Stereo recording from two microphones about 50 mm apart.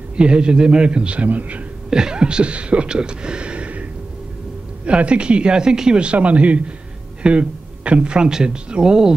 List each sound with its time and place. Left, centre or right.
0.1 s speech: right
1.9 s speech: centre
4.8 s speech: right